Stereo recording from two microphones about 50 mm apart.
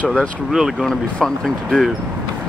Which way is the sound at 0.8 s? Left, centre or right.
Centre.